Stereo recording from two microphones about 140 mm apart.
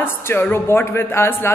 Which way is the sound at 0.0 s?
15° left (ahead or behind).